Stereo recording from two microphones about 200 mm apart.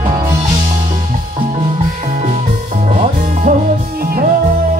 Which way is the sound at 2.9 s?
35° right (ahead or behind).